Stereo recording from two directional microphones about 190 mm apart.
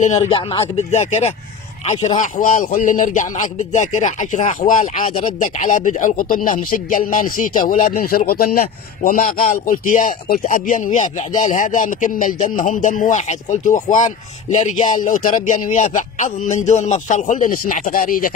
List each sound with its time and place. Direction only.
0.0 s speech: 30° left (ahead or behind); by 18.3 s 50° left (ahead or behind)